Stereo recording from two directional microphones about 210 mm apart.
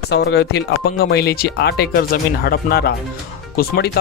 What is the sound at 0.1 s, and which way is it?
Speech, 50° left (ahead or behind).